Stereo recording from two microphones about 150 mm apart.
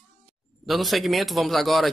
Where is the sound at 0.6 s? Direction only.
Centre (ahead or behind).